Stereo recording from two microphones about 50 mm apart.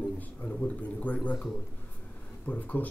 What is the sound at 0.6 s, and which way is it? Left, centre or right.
A man's voice, left.